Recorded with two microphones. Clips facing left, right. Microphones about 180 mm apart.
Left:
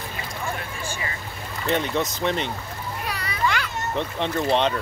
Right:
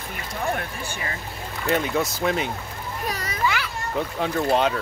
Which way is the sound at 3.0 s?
45° right (ahead or behind).